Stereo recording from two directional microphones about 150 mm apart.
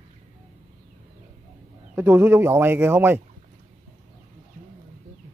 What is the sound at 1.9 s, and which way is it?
Speech, 10° right (ahead or behind).